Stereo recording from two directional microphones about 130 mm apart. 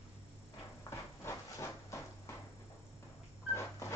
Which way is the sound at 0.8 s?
20° left (ahead or behind).